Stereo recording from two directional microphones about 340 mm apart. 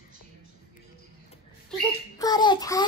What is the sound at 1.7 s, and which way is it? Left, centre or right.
A child's voice, centre.